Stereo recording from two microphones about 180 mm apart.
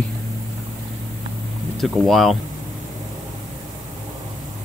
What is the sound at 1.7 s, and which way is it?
Speech, centre (ahead or behind).